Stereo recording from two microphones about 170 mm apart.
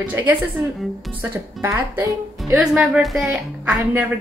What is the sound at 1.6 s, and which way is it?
Speech, 15° right (ahead or behind).